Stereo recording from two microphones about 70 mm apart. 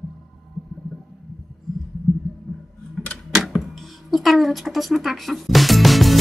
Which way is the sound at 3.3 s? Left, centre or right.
Centre.